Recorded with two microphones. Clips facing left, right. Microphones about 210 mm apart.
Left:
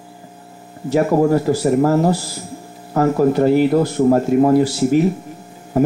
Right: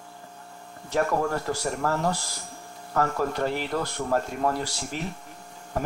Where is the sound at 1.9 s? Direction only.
35° left (ahead or behind).